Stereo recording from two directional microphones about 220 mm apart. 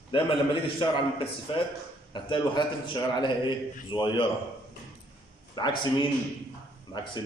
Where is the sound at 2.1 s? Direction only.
20° left (ahead or behind).